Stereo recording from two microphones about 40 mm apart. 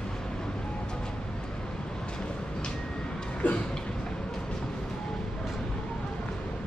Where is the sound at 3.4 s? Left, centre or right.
Left.